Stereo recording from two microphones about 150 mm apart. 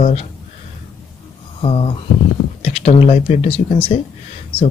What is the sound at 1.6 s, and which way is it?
Speech, 40° left (ahead or behind).